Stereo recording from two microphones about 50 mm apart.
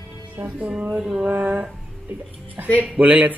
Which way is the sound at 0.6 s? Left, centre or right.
Right.